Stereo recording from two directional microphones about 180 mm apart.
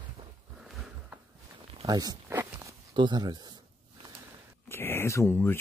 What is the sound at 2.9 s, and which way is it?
Speech, 25° right (ahead or behind).